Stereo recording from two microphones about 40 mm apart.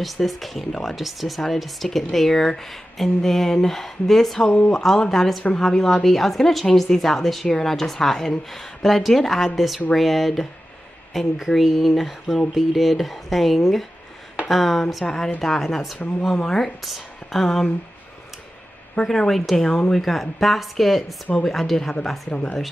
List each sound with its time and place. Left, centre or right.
0.0 s speech: centre
15.0 s speech: centre
16.0 s speech: left
16.3 s speech: centre
16.8 s speech: centre
19.0 s speech: centre
20.0 s speech: centre
22.3 s speech: left